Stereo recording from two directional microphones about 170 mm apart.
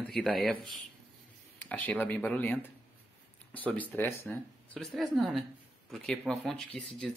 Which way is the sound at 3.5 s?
10° left (ahead or behind).